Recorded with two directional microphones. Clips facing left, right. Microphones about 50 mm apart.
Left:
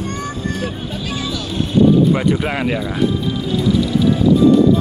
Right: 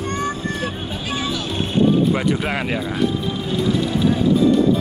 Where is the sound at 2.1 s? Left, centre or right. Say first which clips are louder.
Left 3 dB; centre.